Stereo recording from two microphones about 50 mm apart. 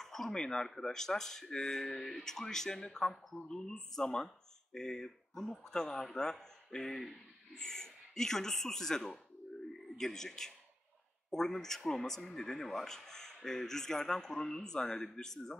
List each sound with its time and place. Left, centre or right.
0.0 s a man's voice: centre